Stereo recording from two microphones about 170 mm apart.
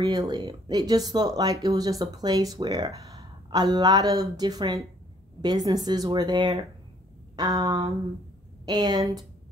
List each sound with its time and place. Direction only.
0.0 s speech: 20° right (ahead or behind)